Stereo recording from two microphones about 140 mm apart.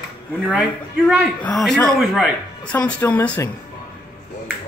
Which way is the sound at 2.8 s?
10° left (ahead or behind).